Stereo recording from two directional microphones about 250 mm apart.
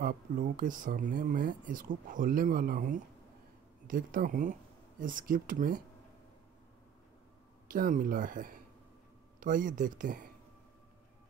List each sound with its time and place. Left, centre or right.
0.0 s speech: right
7.7 s speech: right